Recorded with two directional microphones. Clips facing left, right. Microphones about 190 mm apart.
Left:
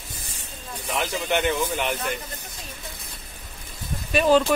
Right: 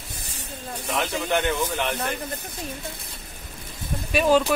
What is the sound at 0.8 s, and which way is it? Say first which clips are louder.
Speech: even; centre (ahead or behind).